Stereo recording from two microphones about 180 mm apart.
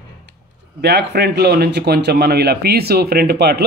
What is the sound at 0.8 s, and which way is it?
A man's voice, 65° right (ahead or behind).